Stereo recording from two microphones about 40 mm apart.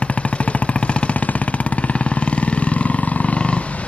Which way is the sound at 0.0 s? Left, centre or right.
Left.